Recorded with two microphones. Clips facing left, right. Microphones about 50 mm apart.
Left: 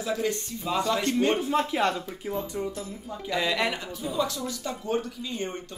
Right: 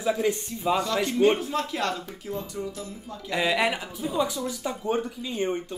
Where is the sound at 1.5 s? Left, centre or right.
Centre.